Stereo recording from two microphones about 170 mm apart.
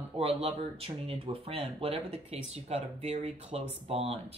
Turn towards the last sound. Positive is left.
turn(degrees=-35)  # may be behind; listen again after turning